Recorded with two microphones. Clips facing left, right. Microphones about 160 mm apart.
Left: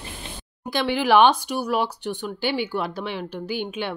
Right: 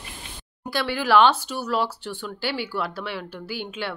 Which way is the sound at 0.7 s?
20° left (ahead or behind).